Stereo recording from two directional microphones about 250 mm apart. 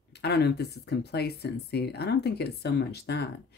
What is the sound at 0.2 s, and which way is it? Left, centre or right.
Speech, left.